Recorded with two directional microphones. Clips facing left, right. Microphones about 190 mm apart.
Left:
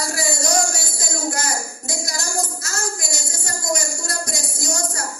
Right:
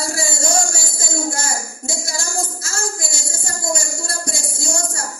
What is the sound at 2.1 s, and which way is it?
Music, 25° right (ahead or behind).